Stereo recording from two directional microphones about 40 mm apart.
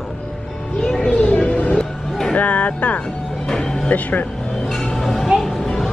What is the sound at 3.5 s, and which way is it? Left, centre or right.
Speech, centre.